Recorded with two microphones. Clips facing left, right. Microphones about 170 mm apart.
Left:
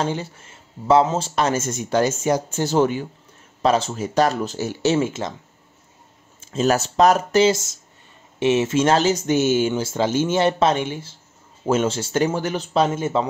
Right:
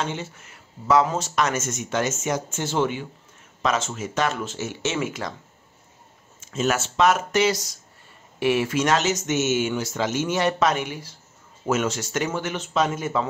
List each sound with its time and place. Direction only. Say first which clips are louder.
0.0 s speech: left 5 dB; 35° left (ahead or behind)
6.4 s speech: left 4 dB; 35° left (ahead or behind)